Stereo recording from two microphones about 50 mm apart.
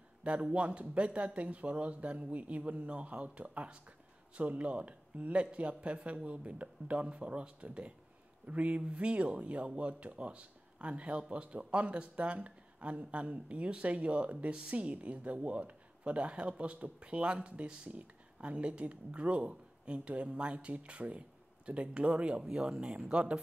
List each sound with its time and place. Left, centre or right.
0.2 s speech: right